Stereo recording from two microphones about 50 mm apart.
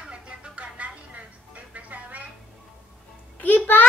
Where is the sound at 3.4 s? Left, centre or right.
Left.